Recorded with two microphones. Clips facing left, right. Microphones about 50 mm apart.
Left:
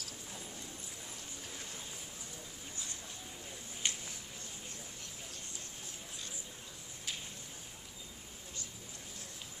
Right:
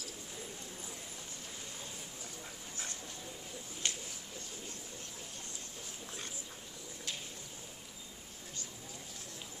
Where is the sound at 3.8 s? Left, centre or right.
Centre.